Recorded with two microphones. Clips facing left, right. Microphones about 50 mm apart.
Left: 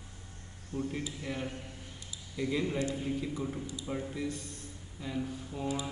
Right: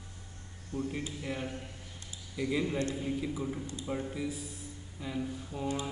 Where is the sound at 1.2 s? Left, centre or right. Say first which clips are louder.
Even; centre.